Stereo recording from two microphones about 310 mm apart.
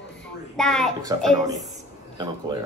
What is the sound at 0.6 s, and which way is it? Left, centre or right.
Speech, centre.